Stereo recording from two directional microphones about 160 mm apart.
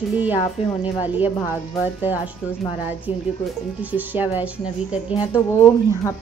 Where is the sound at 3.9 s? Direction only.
10° right (ahead or behind).